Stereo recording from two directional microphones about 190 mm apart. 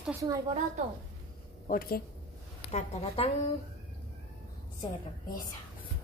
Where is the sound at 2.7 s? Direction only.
35° left (ahead or behind).